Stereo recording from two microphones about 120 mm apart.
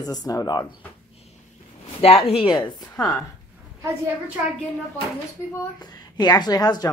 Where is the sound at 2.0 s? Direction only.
55° left (ahead or behind); by 2.9 s 40° left (ahead or behind).